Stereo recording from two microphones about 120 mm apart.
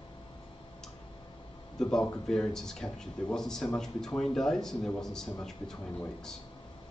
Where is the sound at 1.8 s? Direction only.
5° left (ahead or behind).